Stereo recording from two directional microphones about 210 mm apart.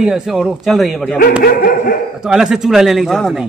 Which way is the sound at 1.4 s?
45° left (ahead or behind).